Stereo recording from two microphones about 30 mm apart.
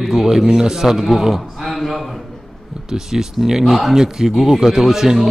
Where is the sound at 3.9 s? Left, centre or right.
Centre.